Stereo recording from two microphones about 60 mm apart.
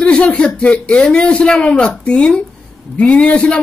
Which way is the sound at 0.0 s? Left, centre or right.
Centre.